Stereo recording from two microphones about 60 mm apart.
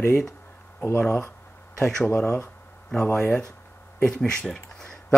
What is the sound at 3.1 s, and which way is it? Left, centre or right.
Speech, centre.